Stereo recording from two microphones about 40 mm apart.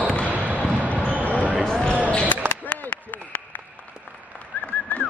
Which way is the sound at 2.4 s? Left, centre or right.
Right.